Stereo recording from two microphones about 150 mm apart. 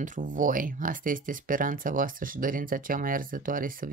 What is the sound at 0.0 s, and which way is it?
Speech, 60° right (ahead or behind).